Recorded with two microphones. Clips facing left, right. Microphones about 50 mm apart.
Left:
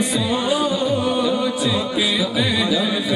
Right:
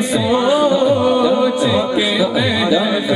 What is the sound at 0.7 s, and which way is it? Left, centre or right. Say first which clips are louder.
Music: right 7 dB; centre.